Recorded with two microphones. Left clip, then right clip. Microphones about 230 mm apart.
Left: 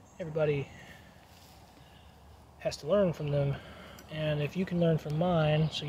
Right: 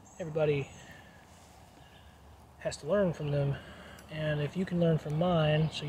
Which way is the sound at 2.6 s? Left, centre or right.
Centre.